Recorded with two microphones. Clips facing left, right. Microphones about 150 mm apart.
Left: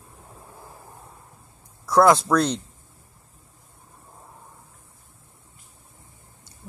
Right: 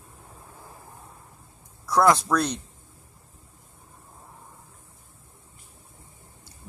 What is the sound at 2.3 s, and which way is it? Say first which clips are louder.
Speech: left 4 dB; 10° right (ahead or behind).